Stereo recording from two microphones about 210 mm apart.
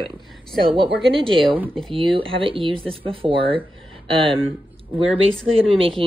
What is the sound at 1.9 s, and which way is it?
A woman's voice, 25° right (ahead or behind).